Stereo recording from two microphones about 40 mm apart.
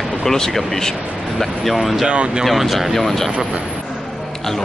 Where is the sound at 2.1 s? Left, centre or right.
Right.